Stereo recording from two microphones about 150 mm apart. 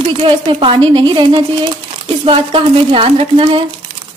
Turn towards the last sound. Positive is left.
turn(degrees=-40)  # may be behind; listen again after turning